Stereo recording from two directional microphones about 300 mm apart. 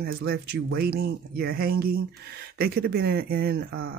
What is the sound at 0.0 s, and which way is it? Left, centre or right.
Speech, right.